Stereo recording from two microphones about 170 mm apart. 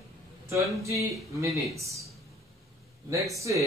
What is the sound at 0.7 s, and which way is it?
Speech, 20° right (ahead or behind).